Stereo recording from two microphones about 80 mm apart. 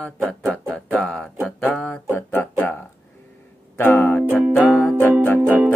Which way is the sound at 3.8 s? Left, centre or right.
Left.